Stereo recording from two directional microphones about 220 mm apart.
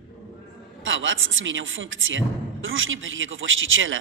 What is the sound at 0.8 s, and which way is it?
Speech, 60° right (ahead or behind).